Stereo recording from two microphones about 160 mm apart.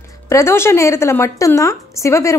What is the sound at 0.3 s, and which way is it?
A woman's voice, 15° left (ahead or behind).